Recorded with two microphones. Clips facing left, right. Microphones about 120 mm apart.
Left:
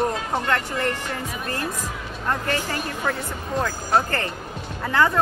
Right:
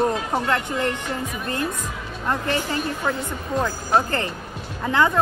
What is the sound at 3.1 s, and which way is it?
Speech, 15° right (ahead or behind).